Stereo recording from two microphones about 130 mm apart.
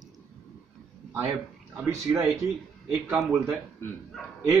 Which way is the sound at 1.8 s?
25° right (ahead or behind).